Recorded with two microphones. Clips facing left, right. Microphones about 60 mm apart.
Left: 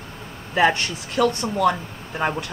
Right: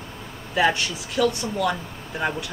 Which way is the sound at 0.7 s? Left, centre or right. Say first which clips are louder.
Left 1 dB; left.